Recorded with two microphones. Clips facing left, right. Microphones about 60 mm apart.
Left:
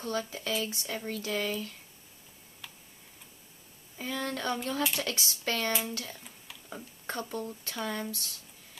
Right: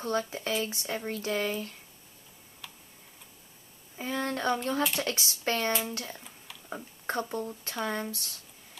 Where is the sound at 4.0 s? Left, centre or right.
Right.